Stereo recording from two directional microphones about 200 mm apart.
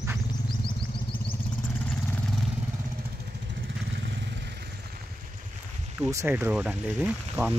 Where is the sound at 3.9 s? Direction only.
60° right (ahead or behind).